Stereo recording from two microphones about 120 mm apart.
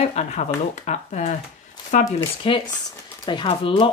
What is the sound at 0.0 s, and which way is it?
Speech, 70° left (ahead or behind).